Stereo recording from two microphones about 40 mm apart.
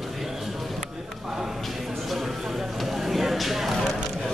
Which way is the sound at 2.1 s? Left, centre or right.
Centre.